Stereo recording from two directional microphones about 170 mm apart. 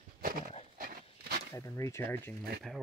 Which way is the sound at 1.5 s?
15° left (ahead or behind).